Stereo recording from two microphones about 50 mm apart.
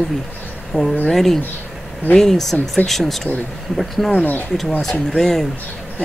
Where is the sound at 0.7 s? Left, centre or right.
Centre.